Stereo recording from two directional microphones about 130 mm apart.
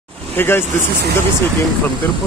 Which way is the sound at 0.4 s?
15° left (ahead or behind).